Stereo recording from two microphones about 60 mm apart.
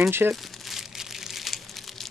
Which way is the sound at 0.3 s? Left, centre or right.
Centre.